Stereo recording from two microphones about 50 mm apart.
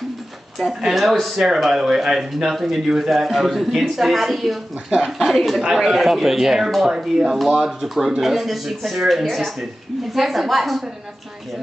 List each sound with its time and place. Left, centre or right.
0.6 s speech: centre